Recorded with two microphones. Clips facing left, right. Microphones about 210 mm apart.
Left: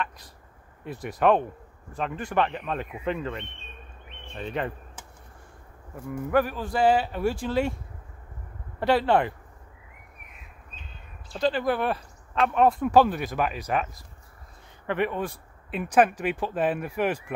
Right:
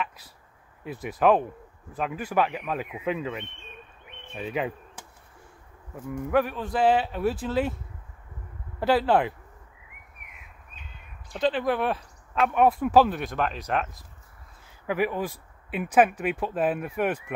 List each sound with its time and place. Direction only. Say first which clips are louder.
0.8 s speech: even; centre (ahead or behind)
6.1 s speech: even; centre (ahead or behind)
8.7 s speech: even; centre (ahead or behind)
11.3 s speech: even; centre (ahead or behind)